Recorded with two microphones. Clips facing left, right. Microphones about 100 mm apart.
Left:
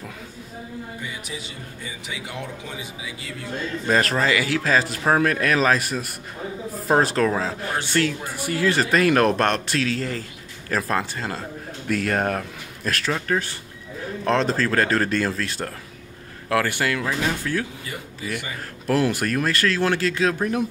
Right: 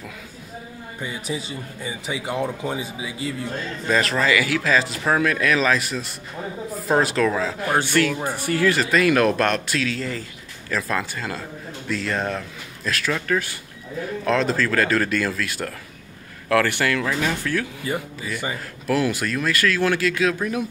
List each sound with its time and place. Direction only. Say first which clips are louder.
1.0 s speech: right 5 dB; 35° right (ahead or behind)
3.8 s speech: even; 40° left (ahead or behind)
8.5 s speech: right 2 dB; 20° left (ahead or behind)
8.7 s speech: even; 40° left (ahead or behind)
11.9 s speech: left 2 dB; 55° left (ahead or behind)
13.0 s speech: right 1 dB; 30° left (ahead or behind)
16.4 s speech: right 2 dB; 20° left (ahead or behind)
18.9 s speech: left 1 dB; 40° left (ahead or behind)